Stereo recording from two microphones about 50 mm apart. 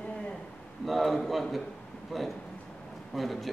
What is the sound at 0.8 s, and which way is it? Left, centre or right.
Speech, centre.